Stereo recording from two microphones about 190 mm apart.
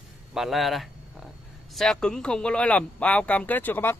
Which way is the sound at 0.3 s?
Centre (ahead or behind).